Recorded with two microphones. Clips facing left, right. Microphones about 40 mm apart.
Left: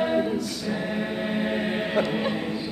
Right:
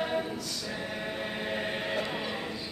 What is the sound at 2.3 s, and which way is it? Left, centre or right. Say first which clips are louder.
Music: left 7 dB; centre.